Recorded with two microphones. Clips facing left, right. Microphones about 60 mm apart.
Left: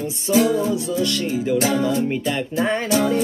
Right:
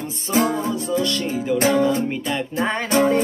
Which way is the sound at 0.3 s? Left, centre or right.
Right.